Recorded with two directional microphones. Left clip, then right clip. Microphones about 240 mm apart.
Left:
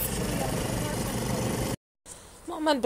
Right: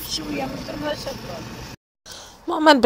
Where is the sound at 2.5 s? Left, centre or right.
Right.